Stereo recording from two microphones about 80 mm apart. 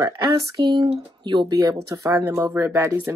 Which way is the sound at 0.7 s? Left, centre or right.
Right.